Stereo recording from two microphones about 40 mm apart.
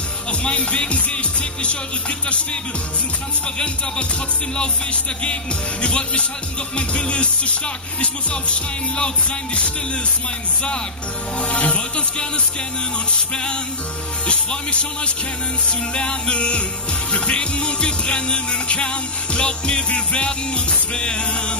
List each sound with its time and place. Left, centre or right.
0.3 s music: left
5.2 s music: left
11.3 s music: left
13.3 s music: left